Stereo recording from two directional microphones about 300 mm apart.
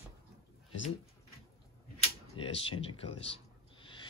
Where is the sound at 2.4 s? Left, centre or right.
Centre.